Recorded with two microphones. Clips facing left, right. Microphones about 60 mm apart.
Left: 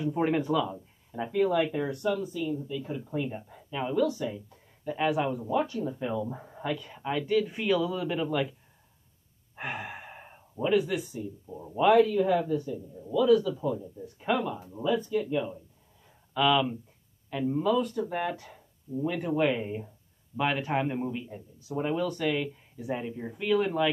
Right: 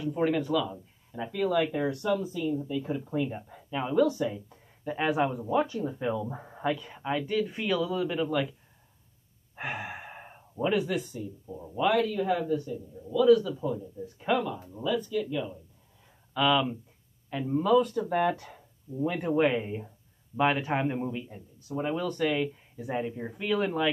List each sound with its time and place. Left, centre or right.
0.0 s speech: left
1.1 s speech: centre
1.6 s speech: centre
9.6 s sigh: centre
11.7 s speech: centre
14.1 s speech: centre
14.8 s speech: left
16.3 s speech: centre
19.0 s speech: centre